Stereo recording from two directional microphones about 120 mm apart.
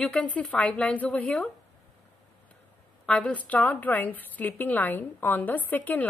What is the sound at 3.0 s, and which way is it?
A woman's voice, 10° left (ahead or behind).